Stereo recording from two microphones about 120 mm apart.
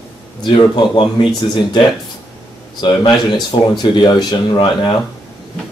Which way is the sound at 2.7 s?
40° left (ahead or behind).